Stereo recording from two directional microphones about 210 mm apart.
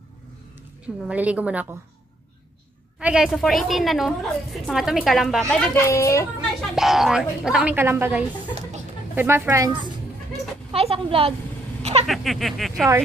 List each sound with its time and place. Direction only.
0.8 s a woman's voice: 5° right (ahead or behind)
3.0 s a woman's voice: 5° right (ahead or behind); by 6.2 s 15° left (ahead or behind)
6.7 s a woman's voice: centre (ahead or behind)
10.7 s a woman's voice: 25° right (ahead or behind)
11.8 s a sound: 30° right (ahead or behind)
12.1 s a woman's voice: centre (ahead or behind)